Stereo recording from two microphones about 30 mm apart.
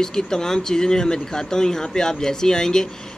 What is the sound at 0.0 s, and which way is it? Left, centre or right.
Speech, left.